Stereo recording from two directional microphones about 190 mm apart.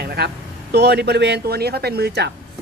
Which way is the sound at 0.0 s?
55° right (ahead or behind).